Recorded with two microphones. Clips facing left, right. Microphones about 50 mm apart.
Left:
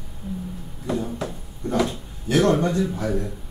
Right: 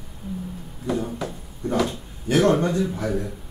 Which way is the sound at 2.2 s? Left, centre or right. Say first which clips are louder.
Even; right.